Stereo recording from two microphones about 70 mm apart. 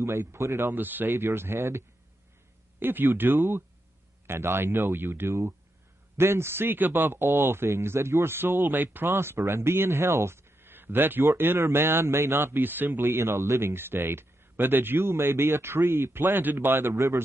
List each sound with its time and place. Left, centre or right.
0.0 s speech: right
16.9 s speech: right